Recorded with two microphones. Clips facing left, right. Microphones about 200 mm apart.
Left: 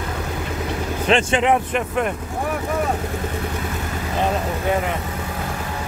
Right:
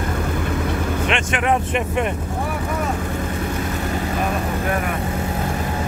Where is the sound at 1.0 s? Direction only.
35° left (ahead or behind).